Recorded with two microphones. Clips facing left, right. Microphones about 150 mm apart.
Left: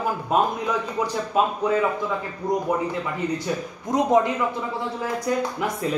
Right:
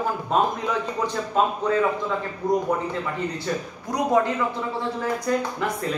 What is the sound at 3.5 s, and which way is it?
Speech, 10° left (ahead or behind).